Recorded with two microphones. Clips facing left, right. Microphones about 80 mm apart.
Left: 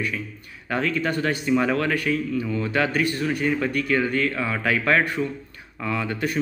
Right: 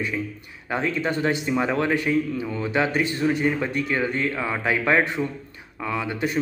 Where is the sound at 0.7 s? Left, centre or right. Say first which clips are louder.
Even; right.